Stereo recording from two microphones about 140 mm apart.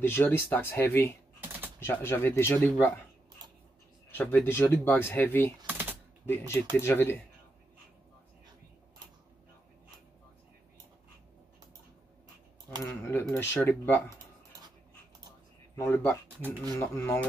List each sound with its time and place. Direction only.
0.0 s speech: 15° left (ahead or behind)
1.4 s a sound: 15° right (ahead or behind)
1.8 s speech: 15° left (ahead or behind)
4.1 s speech: 10° left (ahead or behind)
5.7 s typing: 15° right (ahead or behind)
6.2 s speech: 15° left (ahead or behind)
13.1 s speech: 15° left (ahead or behind)
15.7 s speech: 15° left (ahead or behind)